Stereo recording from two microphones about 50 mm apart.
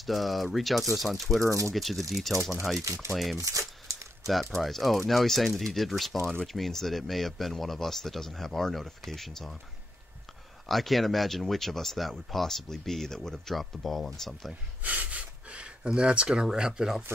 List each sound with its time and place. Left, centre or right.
0.0 s speech: centre
1.4 s speech: right
1.7 s speech: centre
2.8 s speech: right
3.1 s speech: centre
3.3 s a sound: right
4.3 s speech: centre
10.7 s speech: centre
14.5 s speech: right; by 17.0 s centre